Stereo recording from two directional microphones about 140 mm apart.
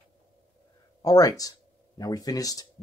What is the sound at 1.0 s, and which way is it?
Speech, 25° left (ahead or behind).